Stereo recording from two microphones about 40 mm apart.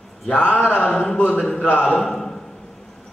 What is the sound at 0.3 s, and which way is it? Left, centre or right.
Speech, left.